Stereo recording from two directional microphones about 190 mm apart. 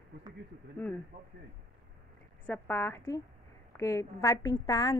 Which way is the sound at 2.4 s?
10° left (ahead or behind).